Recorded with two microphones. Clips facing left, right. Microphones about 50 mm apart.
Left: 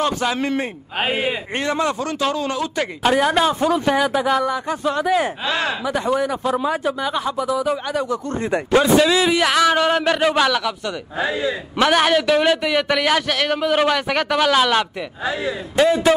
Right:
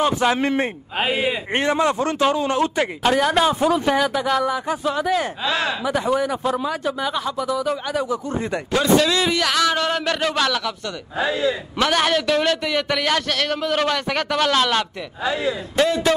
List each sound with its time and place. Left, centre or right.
0.0 s a man's voice: centre
0.9 s a man's voice: centre
1.5 s a man's voice: right
3.0 s speech: centre
4.5 s a man's voice: centre
8.0 s speech: centre
8.5 s a man's voice: centre
15.2 s a man's voice: left